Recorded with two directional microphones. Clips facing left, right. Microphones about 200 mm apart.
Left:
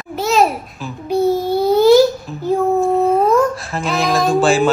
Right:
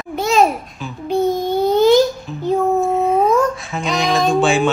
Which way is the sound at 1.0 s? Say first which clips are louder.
Left 2 dB; 10° left (ahead or behind).